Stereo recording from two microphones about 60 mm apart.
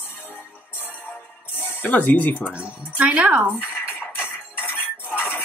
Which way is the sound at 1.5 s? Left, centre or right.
Left.